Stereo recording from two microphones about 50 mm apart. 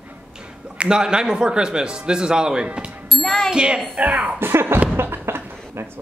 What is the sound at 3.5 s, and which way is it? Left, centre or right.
Speech, centre.